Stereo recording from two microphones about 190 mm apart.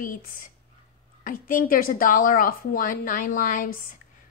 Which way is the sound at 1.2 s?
45° left (ahead or behind).